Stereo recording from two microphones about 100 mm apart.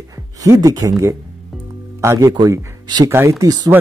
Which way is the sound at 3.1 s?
30° right (ahead or behind).